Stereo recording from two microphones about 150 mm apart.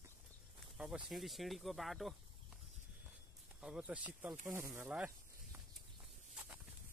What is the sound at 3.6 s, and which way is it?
Speech, 5° right (ahead or behind).